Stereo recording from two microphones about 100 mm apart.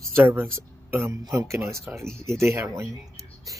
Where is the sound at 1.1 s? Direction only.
30° right (ahead or behind).